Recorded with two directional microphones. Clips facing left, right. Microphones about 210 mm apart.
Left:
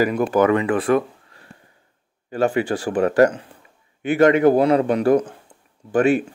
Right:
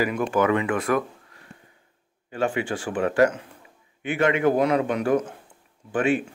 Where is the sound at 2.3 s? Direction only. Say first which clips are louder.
Left 5 dB; 40° left (ahead or behind).